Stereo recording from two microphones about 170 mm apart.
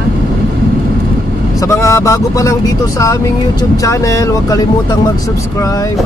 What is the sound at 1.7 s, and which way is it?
Speech, 15° left (ahead or behind).